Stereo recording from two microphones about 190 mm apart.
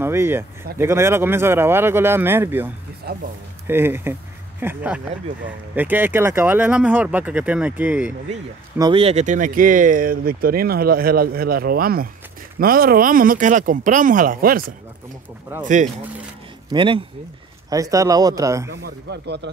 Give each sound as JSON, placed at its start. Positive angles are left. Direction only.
{"t": 0.0, "sound": "speech", "side_deg": -10}
{"t": 3.1, "sound": "speech", "side_deg": -60}
{"t": 3.6, "sound": "speech", "side_deg": -10}
{"t": 8.7, "sound": "speech", "side_deg": -25}
{"t": 15.6, "sound": "speech", "side_deg": -40}
{"t": 16.7, "sound": "speech", "side_deg": -25}
{"t": 18.7, "sound": "speech", "side_deg": -60}